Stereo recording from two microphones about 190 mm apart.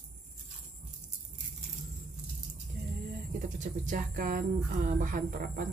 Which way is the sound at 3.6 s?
40° right (ahead or behind).